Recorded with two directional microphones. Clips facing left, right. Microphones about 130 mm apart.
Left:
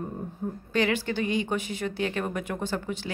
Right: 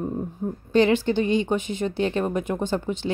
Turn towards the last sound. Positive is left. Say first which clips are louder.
# right 5 dB
turn(degrees=-25)  # may be behind; listen again after turning